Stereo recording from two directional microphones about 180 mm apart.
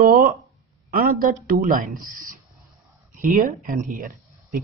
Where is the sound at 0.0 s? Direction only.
55° right (ahead or behind).